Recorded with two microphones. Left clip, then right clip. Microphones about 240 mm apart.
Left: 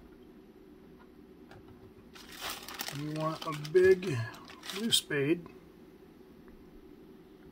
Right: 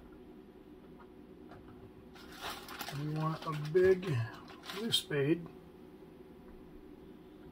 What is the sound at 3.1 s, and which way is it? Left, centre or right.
Speech, left.